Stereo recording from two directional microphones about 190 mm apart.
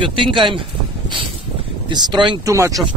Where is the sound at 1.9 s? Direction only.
25° right (ahead or behind).